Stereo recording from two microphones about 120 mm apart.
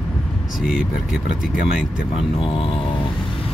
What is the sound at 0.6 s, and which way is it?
Speech, centre (ahead or behind).